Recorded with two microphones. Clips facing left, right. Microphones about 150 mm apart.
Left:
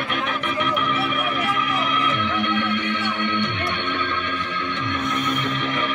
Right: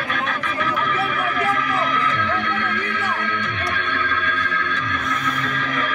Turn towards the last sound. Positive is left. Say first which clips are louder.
# right 2 dB
turn(degrees=25)  # may be behind; listen again after turning